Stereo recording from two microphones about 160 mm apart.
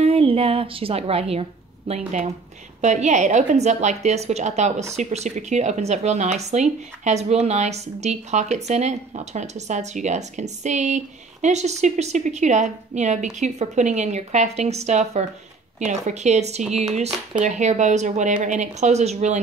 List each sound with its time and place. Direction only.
0.0 s speech: 35° right (ahead or behind)